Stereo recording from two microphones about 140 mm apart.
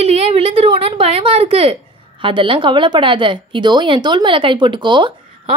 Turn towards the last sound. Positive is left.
turn(degrees=-35)  # may be behind; listen again after turning